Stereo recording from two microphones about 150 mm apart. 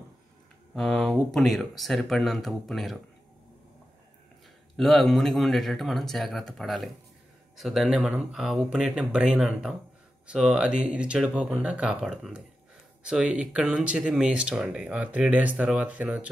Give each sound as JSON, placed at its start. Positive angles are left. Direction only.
{"t": 0.7, "sound": "speech", "side_deg": 0}
{"t": 4.7, "sound": "speech", "side_deg": 0}